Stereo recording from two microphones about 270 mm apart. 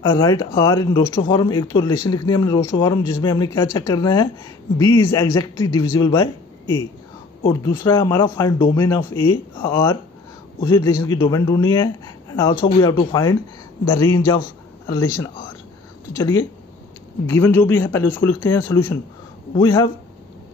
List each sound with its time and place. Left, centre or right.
0.0 s speech: centre